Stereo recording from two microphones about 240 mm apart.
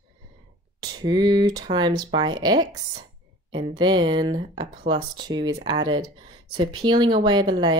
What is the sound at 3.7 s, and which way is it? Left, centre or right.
Speech, centre.